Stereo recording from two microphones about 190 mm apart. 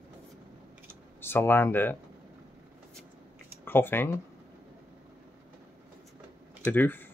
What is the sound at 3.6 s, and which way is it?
Speech, 10° left (ahead or behind).